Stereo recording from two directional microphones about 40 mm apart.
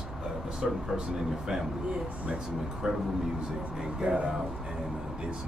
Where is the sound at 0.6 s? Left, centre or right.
Centre.